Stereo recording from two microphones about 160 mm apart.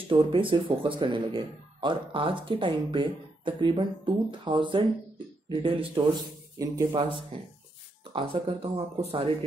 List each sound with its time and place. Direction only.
0.1 s speech: 35° right (ahead or behind)